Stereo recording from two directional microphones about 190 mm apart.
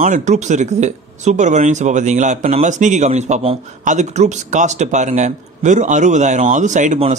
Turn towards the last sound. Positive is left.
turn(degrees=-40)  # may be behind; listen again after turning